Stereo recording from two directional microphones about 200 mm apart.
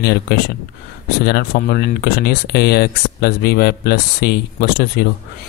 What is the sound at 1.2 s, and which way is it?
Speech, 50° left (ahead or behind).